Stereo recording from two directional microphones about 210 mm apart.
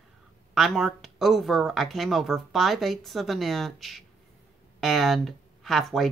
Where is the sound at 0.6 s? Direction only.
Centre (ahead or behind).